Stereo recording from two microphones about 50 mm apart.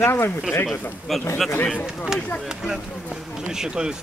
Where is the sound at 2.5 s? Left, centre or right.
Centre.